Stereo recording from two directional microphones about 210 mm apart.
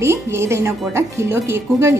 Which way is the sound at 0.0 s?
10° right (ahead or behind).